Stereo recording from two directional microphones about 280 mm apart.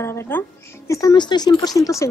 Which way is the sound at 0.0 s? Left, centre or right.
Centre.